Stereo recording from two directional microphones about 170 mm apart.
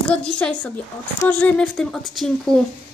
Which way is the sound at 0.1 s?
5° left (ahead or behind).